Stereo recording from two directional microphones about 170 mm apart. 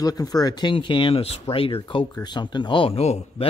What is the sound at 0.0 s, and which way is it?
Speech, 20° left (ahead or behind).